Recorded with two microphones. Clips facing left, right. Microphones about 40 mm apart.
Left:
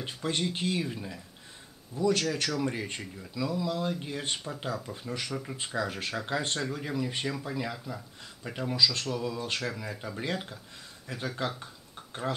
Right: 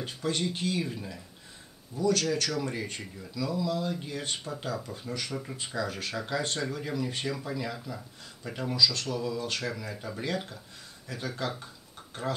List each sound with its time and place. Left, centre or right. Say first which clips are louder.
0.0 s speech: even; left; by 1.2 s centre
1.9 s speech: even; left; by 5.6 s centre
5.9 s speech: left 1 dB; left; by 8.7 s centre
8.7 s speech: right 1 dB; left
9.1 s speech: right 1 dB; centre